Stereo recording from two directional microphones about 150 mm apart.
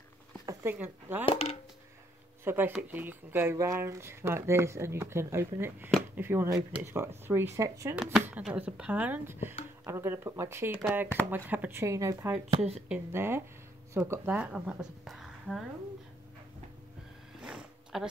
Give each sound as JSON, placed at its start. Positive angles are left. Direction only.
{"t": 0.5, "sound": "speech", "side_deg": -15}
{"t": 1.2, "sound": "a sound", "side_deg": 40}
{"t": 2.4, "sound": "speech", "side_deg": -15}
{"t": 7.9, "sound": "speech", "side_deg": -5}
{"t": 12.4, "sound": "speech", "side_deg": -40}
{"t": 12.8, "sound": "speech", "side_deg": -10}
{"t": 17.4, "sound": "a sound", "side_deg": -5}